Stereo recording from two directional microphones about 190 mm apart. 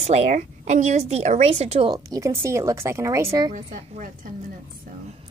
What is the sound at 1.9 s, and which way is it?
Speech, 15° right (ahead or behind).